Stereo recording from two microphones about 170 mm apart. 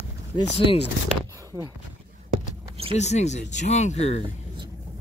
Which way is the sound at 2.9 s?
40° left (ahead or behind).